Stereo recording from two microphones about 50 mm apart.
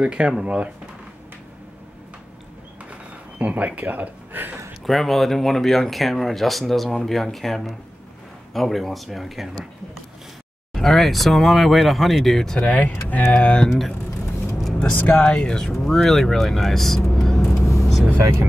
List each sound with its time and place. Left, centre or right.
0.0 s speech: right
2.9 s a sound: right
4.8 s speech: centre
10.7 s speech: centre
12.7 s speech: left
13.3 s speech: left
13.7 s speech: centre
14.8 s speech: left
15.3 s speech: centre
15.7 s speech: centre
17.1 s vehicle: centre